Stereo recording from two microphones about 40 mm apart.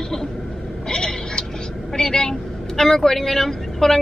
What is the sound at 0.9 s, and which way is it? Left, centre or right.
Speech, centre.